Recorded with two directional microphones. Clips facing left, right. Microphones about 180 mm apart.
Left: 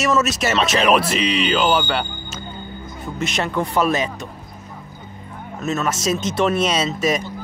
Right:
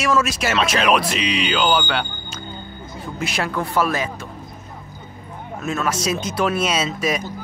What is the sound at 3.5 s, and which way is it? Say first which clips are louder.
Speech: left 2 dB; 20° left (ahead or behind).